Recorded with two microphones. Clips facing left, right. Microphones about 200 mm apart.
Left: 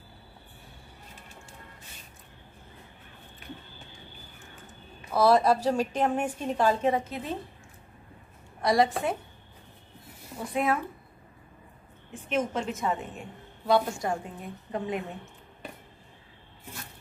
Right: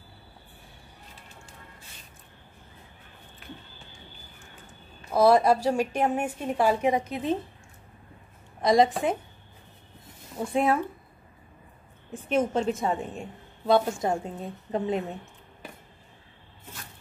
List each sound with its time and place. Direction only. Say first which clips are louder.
5.1 s a woman's voice: right 2 dB; 10° right (ahead or behind)
8.5 s a woman's voice: right 3 dB; 20° right (ahead or behind)
10.4 s a woman's voice: right 3 dB; 30° right (ahead or behind)
12.1 s a woman's voice: right 4 dB; 35° right (ahead or behind)